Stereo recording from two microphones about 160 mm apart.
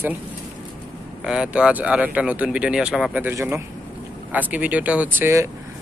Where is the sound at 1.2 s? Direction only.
5° right (ahead or behind).